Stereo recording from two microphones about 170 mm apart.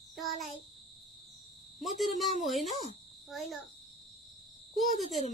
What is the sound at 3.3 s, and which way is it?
Speech, centre (ahead or behind).